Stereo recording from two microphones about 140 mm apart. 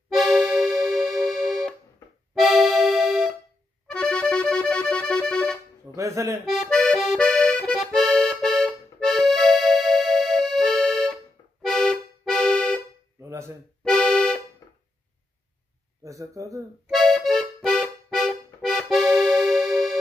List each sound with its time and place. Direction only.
0.1 s music: centre (ahead or behind)
2.4 s accordion: centre (ahead or behind)
5.9 s speech: 20° right (ahead or behind)
6.4 s accordion: centre (ahead or behind)
13.2 s a sound: 20° right (ahead or behind)
13.8 s music: 5° left (ahead or behind)
16.0 s speech: 25° right (ahead or behind)
16.9 s music: centre (ahead or behind)